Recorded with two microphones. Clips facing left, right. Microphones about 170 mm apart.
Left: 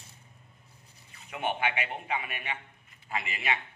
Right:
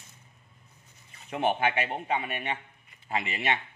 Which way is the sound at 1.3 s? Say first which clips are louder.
Right 5 dB; 35° right (ahead or behind).